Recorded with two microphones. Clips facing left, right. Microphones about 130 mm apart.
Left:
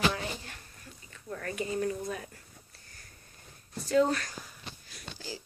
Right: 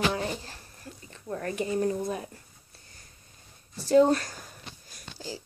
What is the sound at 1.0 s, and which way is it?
Speech, 30° right (ahead or behind).